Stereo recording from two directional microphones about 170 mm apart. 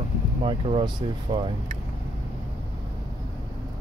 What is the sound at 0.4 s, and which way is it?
Speech, 30° right (ahead or behind).